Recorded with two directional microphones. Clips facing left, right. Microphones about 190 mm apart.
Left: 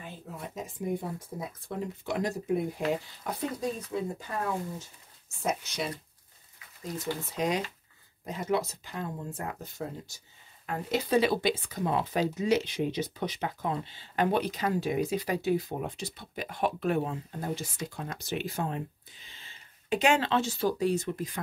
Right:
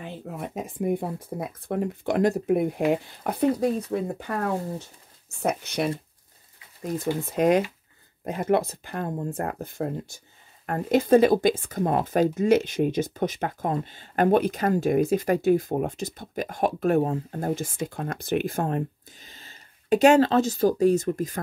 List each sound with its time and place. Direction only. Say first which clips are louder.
0.0 s speech: right 7 dB; 60° right (ahead or behind); by 21.4 s 45° right (ahead or behind)